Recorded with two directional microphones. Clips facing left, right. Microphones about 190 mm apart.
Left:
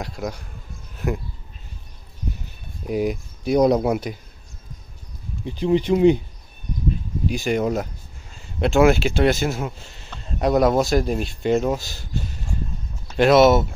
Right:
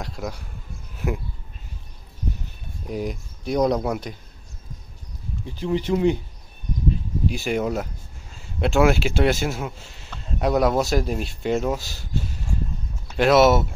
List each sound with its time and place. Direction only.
0.0 s speech: centre (ahead or behind)
2.9 s speech: 10° left (ahead or behind)
5.4 s speech: 20° left (ahead or behind)
7.2 s speech: 5° right (ahead or behind)
13.1 s speech: 5° right (ahead or behind)